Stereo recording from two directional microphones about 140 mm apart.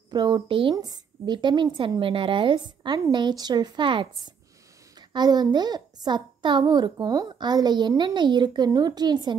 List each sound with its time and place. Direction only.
0.1 s a child's voice: 30° right (ahead or behind)